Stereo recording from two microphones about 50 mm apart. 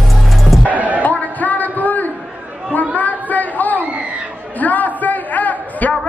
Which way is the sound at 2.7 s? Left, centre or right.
Left.